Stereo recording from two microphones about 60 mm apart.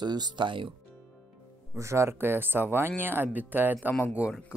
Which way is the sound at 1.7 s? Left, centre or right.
Right.